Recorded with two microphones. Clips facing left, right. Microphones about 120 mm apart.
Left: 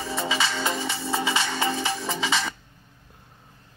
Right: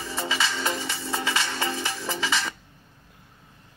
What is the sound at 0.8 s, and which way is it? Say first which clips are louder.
Music: left 3 dB; 30° left (ahead or behind).